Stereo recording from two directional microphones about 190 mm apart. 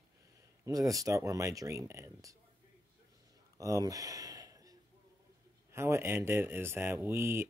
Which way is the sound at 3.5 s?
15° right (ahead or behind).